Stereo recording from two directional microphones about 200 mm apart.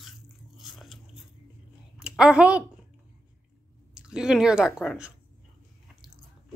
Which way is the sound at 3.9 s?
5° right (ahead or behind).